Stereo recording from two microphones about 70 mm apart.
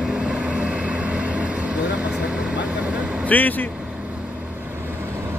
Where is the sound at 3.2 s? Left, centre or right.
Left.